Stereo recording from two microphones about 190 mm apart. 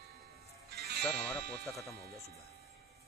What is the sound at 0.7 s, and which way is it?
Music, 55° right (ahead or behind).